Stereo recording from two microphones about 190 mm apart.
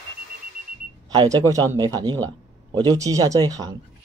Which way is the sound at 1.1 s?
20° right (ahead or behind).